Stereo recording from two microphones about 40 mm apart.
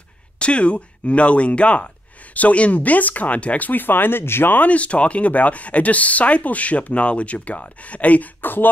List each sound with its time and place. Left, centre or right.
0.4 s speech: left
4.6 s speech: left
8.4 s speech: left